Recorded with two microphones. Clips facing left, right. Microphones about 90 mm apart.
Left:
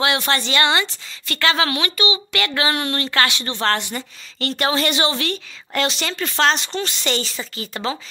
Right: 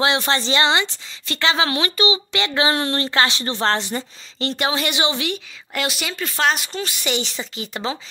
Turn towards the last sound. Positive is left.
turn(degrees=-20)  # may be behind; listen again after turning